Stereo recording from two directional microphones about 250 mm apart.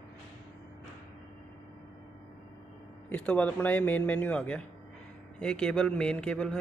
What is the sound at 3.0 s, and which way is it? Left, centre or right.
Speech, centre.